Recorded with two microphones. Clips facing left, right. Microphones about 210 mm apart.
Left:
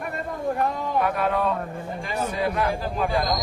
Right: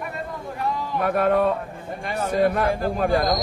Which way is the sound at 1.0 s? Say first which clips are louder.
Right 4 dB; 50° right (ahead or behind).